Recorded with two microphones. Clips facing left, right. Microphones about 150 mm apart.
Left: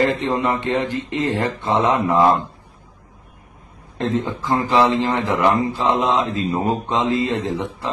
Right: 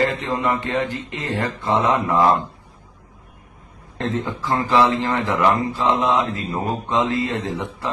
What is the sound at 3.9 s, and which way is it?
Speech, 20° left (ahead or behind).